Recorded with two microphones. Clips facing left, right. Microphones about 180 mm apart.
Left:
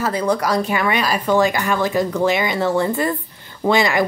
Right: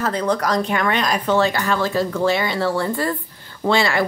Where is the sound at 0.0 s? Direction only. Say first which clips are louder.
Left 1 dB; 10° left (ahead or behind).